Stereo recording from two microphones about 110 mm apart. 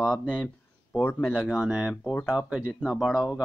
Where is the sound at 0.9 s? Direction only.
20° left (ahead or behind).